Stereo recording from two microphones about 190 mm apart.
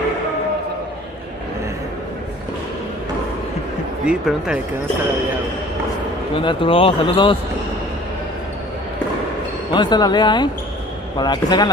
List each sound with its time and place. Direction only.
4.0 s speech: 5° right (ahead or behind)
6.3 s speech: 30° left (ahead or behind)
9.7 s speech: 25° left (ahead or behind)